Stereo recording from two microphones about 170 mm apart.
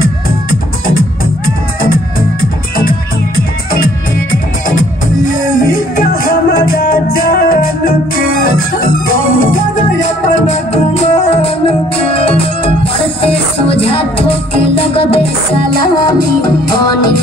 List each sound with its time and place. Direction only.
0.0 s music: 60° left (ahead or behind)
5.2 s music: 55° left (ahead or behind)
10.0 s music: 40° left (ahead or behind); by 17.1 s 25° left (ahead or behind)